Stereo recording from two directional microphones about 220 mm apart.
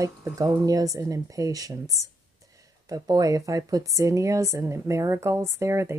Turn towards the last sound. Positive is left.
turn(degrees=-15)  # may be behind; listen again after turning